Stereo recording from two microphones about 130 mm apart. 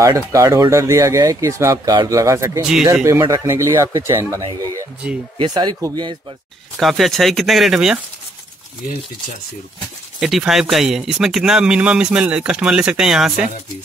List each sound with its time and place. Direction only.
0.0 s speech: 25° right (ahead or behind)
2.6 s speech: 5° right (ahead or behind)
3.1 s speech: 20° right (ahead or behind)
6.8 s speech: centre (ahead or behind)
10.2 s speech: 5° right (ahead or behind)